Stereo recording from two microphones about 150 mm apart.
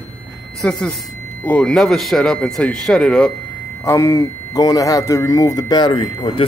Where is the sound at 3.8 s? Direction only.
20° left (ahead or behind).